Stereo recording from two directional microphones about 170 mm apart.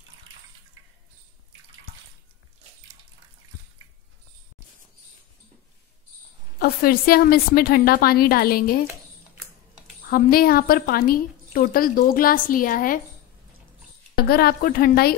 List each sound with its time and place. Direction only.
6.6 s a woman's voice: 60° left (ahead or behind)
10.0 s a woman's voice: 60° left (ahead or behind)
14.1 s a woman's voice: 65° left (ahead or behind)